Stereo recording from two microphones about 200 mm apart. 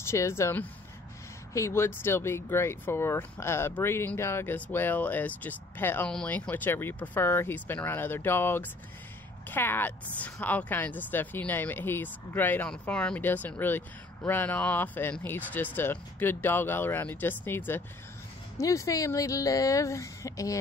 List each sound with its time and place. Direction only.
0.1 s a woman's voice: 15° left (ahead or behind)